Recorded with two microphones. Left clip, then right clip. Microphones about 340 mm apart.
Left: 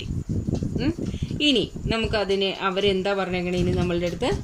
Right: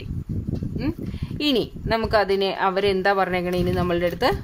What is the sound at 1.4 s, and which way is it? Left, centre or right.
Speech, right.